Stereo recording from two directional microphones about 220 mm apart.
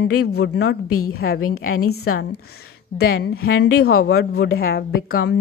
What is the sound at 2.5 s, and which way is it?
A woman's voice, 45° left (ahead or behind).